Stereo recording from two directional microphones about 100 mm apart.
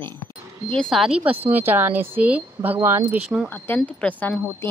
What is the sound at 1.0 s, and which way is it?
Speech, 10° right (ahead or behind).